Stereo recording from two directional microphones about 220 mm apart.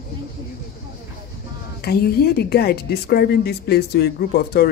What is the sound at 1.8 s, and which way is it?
A woman's voice, 45° left (ahead or behind).